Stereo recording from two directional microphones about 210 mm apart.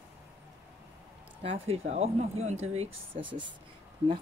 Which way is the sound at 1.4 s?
30° right (ahead or behind).